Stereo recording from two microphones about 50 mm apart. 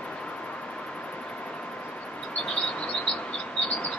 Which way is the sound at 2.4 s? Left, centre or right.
Centre.